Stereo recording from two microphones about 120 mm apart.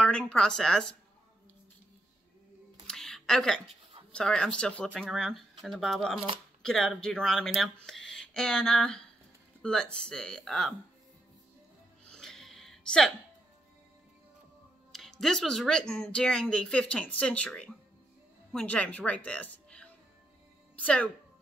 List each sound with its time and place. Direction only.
0.0 s speech: 10° left (ahead or behind)
2.9 s a sound: 5° left (ahead or behind)
4.1 s speech: 5° left (ahead or behind)
6.1 s speech: 50° right (ahead or behind)
6.6 s speech: 5° left (ahead or behind)
12.1 s a sound: 5° left (ahead or behind)
14.9 s a woman's voice: centre (ahead or behind)